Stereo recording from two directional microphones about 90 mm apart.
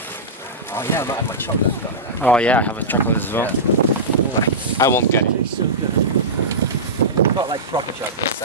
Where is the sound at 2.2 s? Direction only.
15° left (ahead or behind).